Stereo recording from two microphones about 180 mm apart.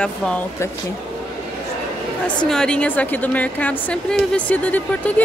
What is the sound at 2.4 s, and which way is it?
A woman's voice, 5° left (ahead or behind).